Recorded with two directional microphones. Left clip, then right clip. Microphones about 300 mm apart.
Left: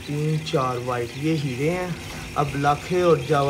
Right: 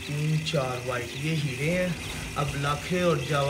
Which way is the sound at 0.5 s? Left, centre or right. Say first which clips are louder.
Left 5 dB; left.